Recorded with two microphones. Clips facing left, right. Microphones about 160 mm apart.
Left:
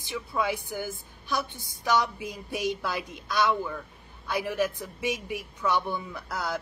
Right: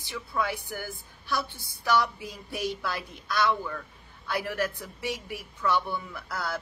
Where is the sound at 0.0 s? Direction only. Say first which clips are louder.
Left 2 dB; 20° left (ahead or behind).